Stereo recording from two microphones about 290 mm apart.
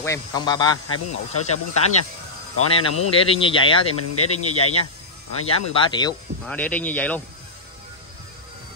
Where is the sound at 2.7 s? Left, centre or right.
Centre.